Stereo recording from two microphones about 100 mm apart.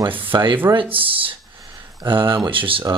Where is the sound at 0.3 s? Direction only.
55° right (ahead or behind).